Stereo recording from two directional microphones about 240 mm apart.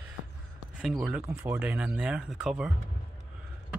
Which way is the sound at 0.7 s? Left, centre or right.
Centre.